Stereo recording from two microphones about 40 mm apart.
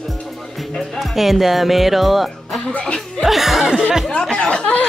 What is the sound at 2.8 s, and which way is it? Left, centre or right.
Speech, centre.